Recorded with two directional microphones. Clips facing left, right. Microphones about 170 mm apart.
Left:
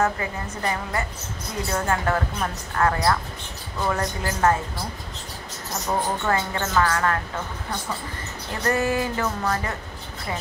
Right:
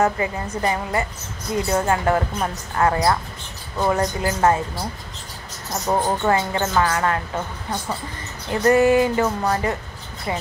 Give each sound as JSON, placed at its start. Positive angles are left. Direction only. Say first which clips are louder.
{"t": 0.0, "sound": "speech", "louder": "right 4 dB", "side_deg": -20}
{"t": 5.9, "sound": "speech", "louder": "right 5 dB", "side_deg": -25}
{"t": 8.6, "sound": "speech", "louder": "right 8 dB", "side_deg": -20}